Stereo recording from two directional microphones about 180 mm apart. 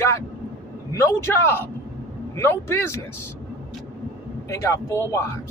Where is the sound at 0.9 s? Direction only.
15° left (ahead or behind).